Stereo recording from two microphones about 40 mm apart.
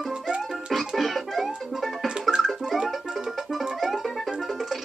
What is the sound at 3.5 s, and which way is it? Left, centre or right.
Music, centre.